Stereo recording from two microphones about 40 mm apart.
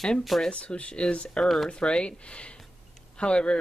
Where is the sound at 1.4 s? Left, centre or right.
Centre.